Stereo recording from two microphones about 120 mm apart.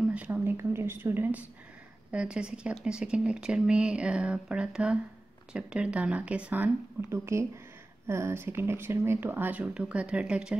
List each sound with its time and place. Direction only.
0.1 s speech: 15° right (ahead or behind)